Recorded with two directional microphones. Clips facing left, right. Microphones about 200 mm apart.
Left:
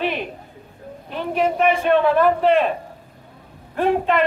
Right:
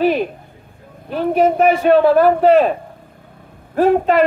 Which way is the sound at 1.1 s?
40° right (ahead or behind).